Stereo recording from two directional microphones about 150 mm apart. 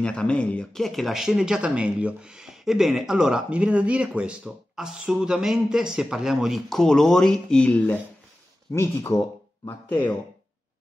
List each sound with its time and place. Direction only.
0.0 s speech: 5° left (ahead or behind)